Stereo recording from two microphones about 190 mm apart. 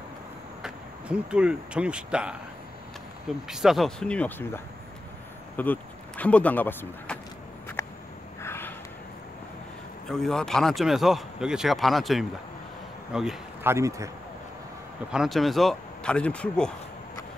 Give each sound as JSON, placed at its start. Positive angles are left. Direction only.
{"t": 0.6, "sound": "speech", "side_deg": -5}
{"t": 5.6, "sound": "speech", "side_deg": 10}
{"t": 8.4, "sound": "a sound", "side_deg": 10}
{"t": 10.0, "sound": "speech", "side_deg": 5}
{"t": 13.7, "sound": "speech", "side_deg": -15}
{"t": 15.0, "sound": "speech", "side_deg": 0}